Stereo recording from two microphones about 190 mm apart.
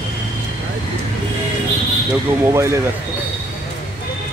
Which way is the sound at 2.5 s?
15° right (ahead or behind).